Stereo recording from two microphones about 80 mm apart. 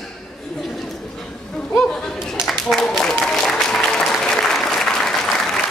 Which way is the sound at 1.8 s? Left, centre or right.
Centre.